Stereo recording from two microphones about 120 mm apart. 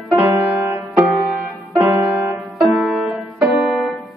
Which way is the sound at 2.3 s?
Centre (ahead or behind).